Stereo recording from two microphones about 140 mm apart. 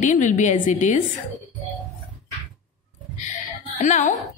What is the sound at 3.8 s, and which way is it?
Speech, 60° left (ahead or behind).